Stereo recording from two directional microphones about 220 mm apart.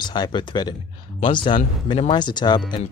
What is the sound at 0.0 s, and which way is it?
Speech, 20° left (ahead or behind).